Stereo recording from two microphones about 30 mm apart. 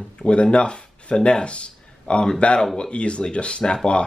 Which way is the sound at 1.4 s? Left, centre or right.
Left.